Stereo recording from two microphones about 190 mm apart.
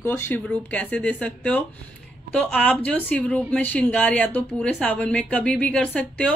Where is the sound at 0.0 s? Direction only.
10° left (ahead or behind).